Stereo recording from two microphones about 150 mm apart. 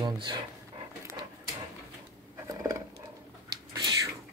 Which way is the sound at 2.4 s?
25° right (ahead or behind).